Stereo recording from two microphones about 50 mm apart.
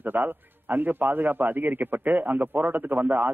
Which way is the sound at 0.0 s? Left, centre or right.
Right.